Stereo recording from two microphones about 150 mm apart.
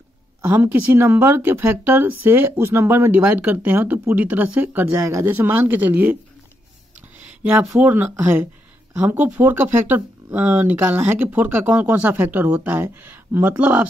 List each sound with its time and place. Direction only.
0.4 s speech: 10° right (ahead or behind)